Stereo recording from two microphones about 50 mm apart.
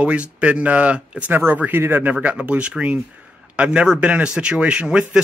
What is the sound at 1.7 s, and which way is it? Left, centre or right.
Speech, right.